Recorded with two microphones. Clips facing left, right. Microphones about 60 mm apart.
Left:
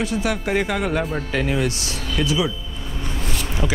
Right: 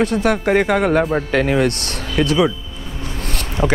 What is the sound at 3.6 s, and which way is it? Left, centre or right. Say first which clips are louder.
Speech: right 7 dB; centre.